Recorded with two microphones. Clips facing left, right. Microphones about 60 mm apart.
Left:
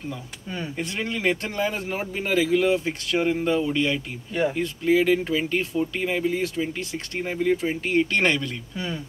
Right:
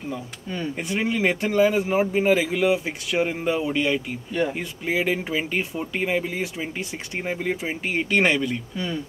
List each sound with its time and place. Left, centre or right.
0.7 s speech: centre